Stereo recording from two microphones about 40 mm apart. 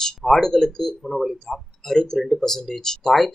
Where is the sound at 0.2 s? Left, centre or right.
Centre.